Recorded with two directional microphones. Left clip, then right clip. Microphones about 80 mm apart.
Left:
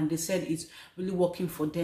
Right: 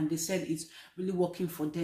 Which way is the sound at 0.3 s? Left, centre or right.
Left.